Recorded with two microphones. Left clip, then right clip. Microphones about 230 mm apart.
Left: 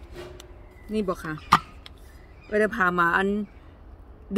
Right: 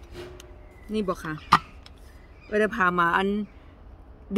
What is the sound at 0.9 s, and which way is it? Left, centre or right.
Speech, centre.